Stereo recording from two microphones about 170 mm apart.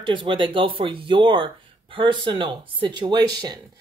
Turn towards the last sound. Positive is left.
turn(degrees=-25)  # may be behind; listen again after turning